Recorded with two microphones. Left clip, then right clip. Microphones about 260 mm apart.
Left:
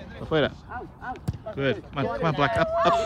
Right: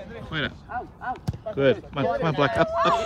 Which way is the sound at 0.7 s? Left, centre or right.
Centre.